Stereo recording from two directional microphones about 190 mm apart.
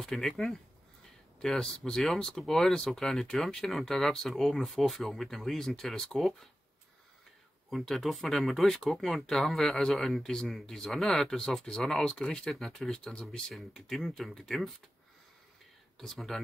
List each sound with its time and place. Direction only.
0.0 s speech: centre (ahead or behind)
7.7 s speech: centre (ahead or behind)
16.0 s speech: centre (ahead or behind)